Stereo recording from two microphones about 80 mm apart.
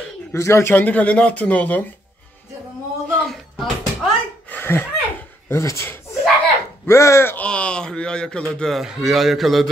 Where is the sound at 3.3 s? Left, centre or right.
Centre.